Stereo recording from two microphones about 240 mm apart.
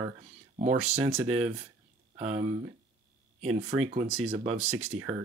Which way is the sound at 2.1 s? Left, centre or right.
Right.